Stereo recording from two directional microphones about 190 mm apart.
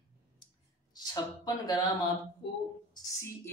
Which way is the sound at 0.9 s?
20° left (ahead or behind).